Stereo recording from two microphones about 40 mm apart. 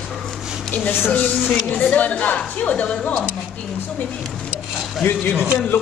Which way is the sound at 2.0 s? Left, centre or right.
Left.